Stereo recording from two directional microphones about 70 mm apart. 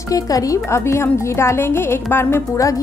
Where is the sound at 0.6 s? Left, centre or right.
Left.